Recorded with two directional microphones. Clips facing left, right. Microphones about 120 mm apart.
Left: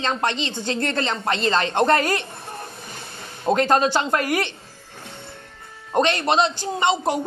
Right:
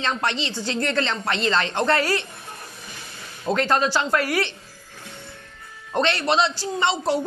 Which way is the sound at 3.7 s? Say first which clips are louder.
Left 2 dB; 45° left (ahead or behind).